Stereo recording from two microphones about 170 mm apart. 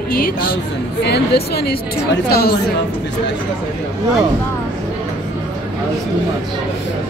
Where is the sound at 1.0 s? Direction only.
70° left (ahead or behind).